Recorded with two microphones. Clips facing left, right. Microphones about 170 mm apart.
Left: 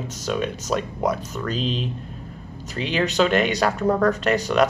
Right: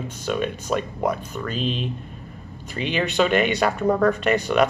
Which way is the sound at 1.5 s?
55° right (ahead or behind).